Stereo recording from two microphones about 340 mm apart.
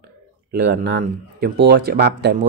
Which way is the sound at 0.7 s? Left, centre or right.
Right.